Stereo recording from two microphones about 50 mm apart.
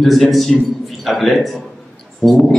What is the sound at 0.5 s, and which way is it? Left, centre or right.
A man's voice, centre.